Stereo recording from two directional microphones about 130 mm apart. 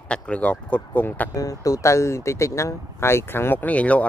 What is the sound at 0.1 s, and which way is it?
Speech, 10° left (ahead or behind).